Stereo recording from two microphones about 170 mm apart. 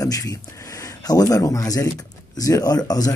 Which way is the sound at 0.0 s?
20° left (ahead or behind).